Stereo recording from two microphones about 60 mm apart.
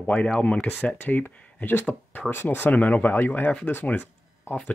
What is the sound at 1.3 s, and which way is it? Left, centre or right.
Speech, left.